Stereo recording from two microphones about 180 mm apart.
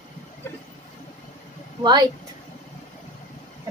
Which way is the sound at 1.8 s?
25° right (ahead or behind).